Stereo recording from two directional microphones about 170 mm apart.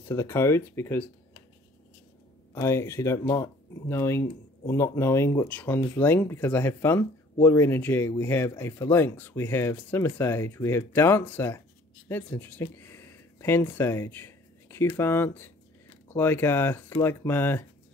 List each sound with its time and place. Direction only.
0.1 s speech: 15° left (ahead or behind)
2.5 s speech: 15° left (ahead or behind)